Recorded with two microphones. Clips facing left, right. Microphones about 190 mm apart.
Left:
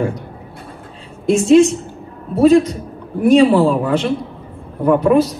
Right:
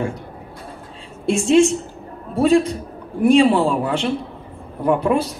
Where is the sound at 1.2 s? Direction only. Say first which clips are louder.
Left 4 dB; 35° left (ahead or behind).